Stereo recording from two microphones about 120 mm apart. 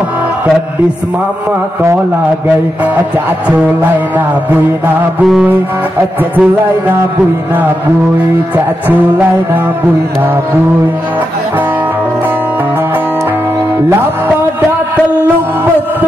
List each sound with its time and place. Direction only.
4.5 s music: 10° right (ahead or behind)
8.8 s music: 15° right (ahead or behind)